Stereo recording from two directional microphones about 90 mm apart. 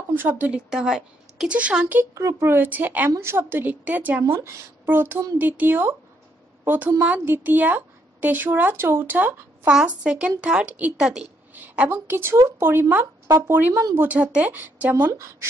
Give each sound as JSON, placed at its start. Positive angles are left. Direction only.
{"t": 0.1, "sound": "speech", "side_deg": -20}
{"t": 2.0, "sound": "speech", "side_deg": -30}
{"t": 4.2, "sound": "speech", "side_deg": -35}
{"t": 9.7, "sound": "a woman's voice", "side_deg": -10}
{"t": 11.9, "sound": "speech", "side_deg": -25}
{"t": 13.5, "sound": "speech", "side_deg": -20}